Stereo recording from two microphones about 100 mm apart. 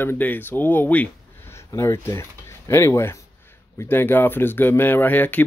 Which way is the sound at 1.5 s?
30° left (ahead or behind).